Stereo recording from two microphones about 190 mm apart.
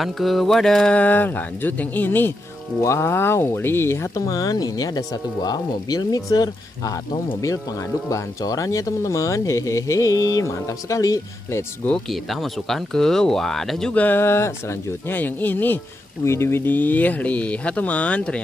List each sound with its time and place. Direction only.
0.0 s speech: centre (ahead or behind)